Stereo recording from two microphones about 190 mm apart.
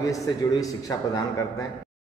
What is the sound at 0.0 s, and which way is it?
A man's voice, 20° left (ahead or behind).